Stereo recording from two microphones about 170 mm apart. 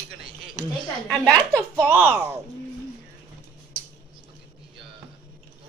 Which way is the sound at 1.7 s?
10° right (ahead or behind).